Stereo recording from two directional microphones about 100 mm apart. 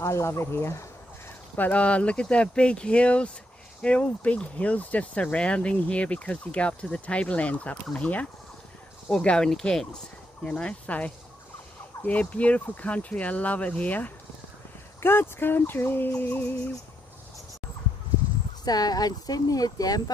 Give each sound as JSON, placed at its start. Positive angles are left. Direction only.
{"t": 0.0, "sound": "speech", "side_deg": 30}
{"t": 1.6, "sound": "speech", "side_deg": 15}
{"t": 18.6, "sound": "speech", "side_deg": 40}